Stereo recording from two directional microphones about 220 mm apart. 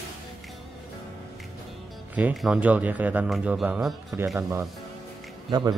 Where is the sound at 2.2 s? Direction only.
5° right (ahead or behind).